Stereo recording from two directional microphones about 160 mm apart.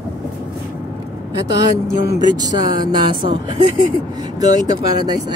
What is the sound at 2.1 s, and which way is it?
Speech, 25° right (ahead or behind).